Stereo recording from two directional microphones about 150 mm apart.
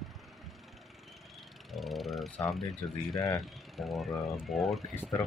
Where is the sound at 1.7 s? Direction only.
Centre (ahead or behind).